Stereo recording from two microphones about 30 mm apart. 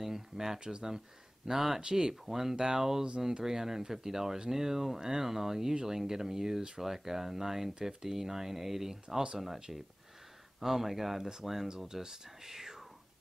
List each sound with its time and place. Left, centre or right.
0.0 s speech: centre
1.8 s speech: right
2.2 s speech: centre
2.5 s speech: right
2.8 s speech: centre